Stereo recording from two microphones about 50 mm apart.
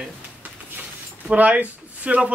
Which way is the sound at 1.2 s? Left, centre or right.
Right.